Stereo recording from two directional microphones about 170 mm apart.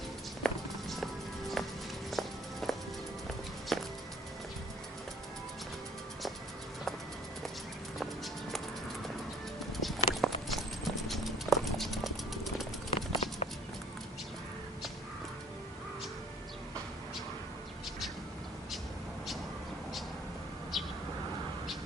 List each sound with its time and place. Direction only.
0.4 s music: centre (ahead or behind)
3.7 s music: centre (ahead or behind)
8.0 s music: centre (ahead or behind)
9.8 s clip-clop: centre (ahead or behind)
12.9 s clip-clop: 30° left (ahead or behind)
20.7 s vehicle: centre (ahead or behind)